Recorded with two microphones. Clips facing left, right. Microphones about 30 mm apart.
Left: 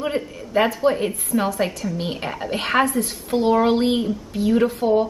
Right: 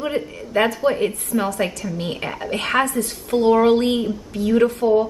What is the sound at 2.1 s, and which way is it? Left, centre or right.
Speech, centre.